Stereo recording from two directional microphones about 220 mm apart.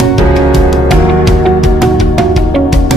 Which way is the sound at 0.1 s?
Centre (ahead or behind).